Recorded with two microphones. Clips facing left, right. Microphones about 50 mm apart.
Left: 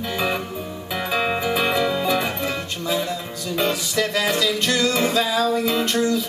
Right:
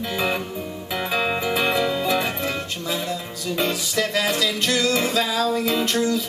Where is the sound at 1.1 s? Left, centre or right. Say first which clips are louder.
Left 1 dB; centre.